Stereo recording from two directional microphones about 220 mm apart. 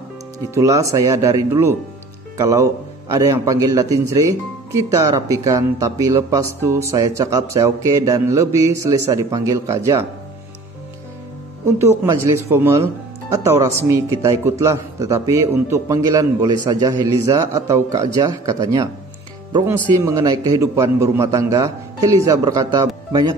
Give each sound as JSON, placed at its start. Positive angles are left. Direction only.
{"t": 0.6, "sound": "speech", "side_deg": -15}
{"t": 12.0, "sound": "speech", "side_deg": -15}